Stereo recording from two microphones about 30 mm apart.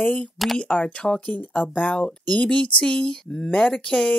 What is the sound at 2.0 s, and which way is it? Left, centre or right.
Speech, left.